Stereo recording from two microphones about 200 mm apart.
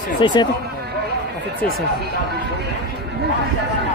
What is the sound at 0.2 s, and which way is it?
Speech, 25° left (ahead or behind).